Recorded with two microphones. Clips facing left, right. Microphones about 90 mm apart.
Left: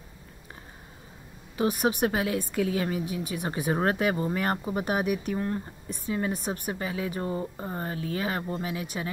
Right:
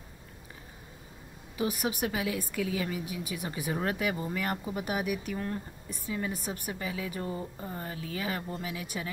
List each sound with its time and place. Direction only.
1.6 s a woman's voice: 40° left (ahead or behind)